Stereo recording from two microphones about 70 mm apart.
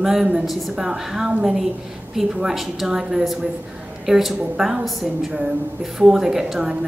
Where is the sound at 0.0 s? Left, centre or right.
Centre.